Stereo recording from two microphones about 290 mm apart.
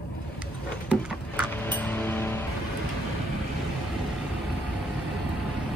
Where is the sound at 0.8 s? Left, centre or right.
Centre.